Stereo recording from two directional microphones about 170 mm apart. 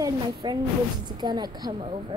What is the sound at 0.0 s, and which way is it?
A woman's voice, 25° right (ahead or behind).